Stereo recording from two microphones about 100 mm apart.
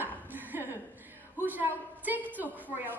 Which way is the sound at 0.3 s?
20° right (ahead or behind).